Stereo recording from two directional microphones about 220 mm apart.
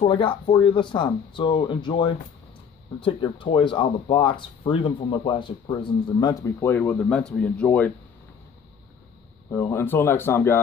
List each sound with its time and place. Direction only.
0.0 s speech: 25° left (ahead or behind); by 7.9 s 5° left (ahead or behind)
9.5 s speech: 10° left (ahead or behind)